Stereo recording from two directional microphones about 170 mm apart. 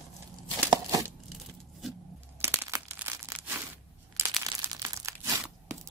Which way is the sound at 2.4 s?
15° right (ahead or behind).